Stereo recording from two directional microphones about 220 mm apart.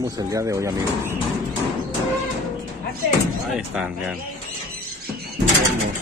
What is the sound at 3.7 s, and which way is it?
Speech, 5° right (ahead or behind).